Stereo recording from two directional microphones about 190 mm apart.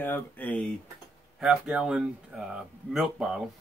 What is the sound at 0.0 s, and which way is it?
Speech, 10° left (ahead or behind).